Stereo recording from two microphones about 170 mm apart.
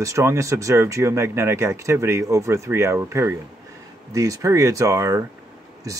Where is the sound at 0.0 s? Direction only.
15° right (ahead or behind).